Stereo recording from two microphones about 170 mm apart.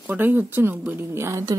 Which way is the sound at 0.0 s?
10° right (ahead or behind).